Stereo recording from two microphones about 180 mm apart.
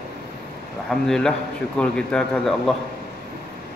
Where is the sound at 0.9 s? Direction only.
5° left (ahead or behind).